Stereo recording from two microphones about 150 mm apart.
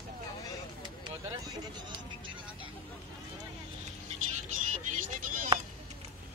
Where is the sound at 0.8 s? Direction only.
30° right (ahead or behind).